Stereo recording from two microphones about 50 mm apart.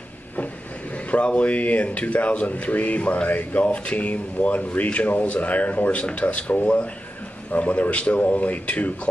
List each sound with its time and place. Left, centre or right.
1.1 s speech: left